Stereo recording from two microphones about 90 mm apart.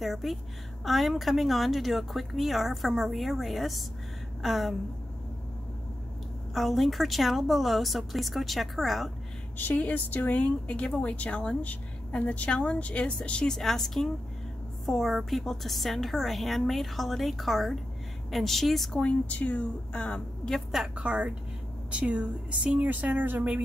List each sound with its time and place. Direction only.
0.0 s speech: centre (ahead or behind)
6.5 s speech: centre (ahead or behind)
9.6 s speech: 20° left (ahead or behind); by 19.0 s centre (ahead or behind)
19.0 s speech: 15° left (ahead or behind)
20.9 s speech: 15° right (ahead or behind)